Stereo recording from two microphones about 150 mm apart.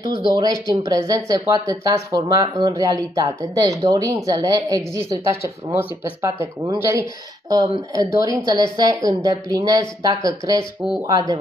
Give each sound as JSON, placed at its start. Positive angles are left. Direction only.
{"t": 0.0, "sound": "speech", "side_deg": 70}
{"t": 0.3, "sound": "speech", "side_deg": -25}